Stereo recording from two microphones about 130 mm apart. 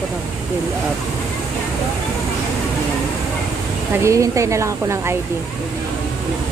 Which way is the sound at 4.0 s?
25° right (ahead or behind).